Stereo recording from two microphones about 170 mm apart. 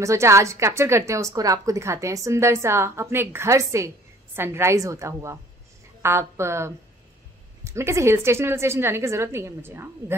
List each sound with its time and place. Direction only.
0.0 s a woman's voice: 15° right (ahead or behind)